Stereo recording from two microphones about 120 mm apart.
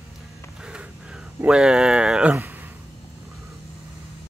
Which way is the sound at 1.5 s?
5° right (ahead or behind).